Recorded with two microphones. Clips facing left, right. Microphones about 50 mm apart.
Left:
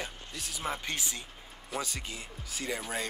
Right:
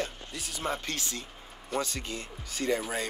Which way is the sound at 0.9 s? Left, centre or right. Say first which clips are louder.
Right 1 dB; centre.